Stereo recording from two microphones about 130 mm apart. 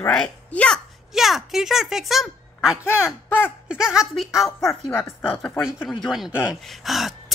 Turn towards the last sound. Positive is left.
turn(degrees=0)  # may be behind; listen again after turning